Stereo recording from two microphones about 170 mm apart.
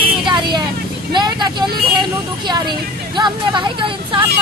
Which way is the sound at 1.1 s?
25° right (ahead or behind).